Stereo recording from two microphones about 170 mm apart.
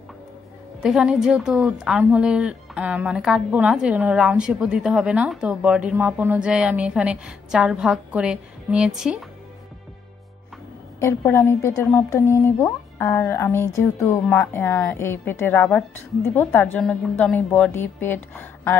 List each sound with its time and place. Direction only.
0.8 s a woman's voice: 5° right (ahead or behind)
11.0 s speech: 15° left (ahead or behind)
14.2 s speech: 5° left (ahead or behind)